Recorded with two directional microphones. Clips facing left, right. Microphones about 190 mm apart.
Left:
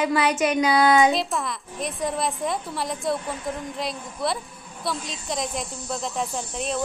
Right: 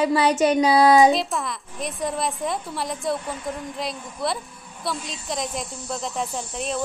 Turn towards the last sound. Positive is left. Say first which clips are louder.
# even
turn(degrees=0)  # may be behind; listen again after turning